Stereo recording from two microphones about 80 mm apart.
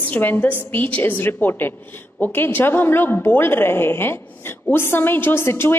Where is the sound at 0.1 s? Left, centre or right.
Left.